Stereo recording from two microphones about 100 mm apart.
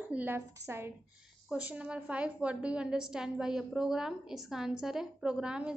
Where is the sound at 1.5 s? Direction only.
15° right (ahead or behind).